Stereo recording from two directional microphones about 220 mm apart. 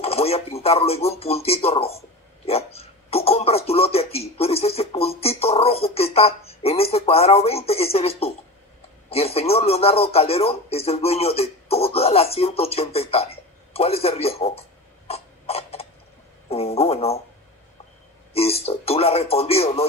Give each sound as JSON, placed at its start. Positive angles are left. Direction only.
{"t": 0.0, "sound": "a man's voice", "side_deg": 25}
{"t": 15.0, "sound": "a sound", "side_deg": 25}
{"t": 16.4, "sound": "speech", "side_deg": 25}
{"t": 18.3, "sound": "a man's voice", "side_deg": 25}